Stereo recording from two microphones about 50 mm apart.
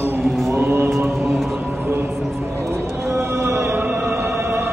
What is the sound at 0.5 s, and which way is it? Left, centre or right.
Mantra, right.